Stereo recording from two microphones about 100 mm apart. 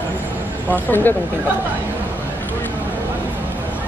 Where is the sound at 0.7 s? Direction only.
20° left (ahead or behind).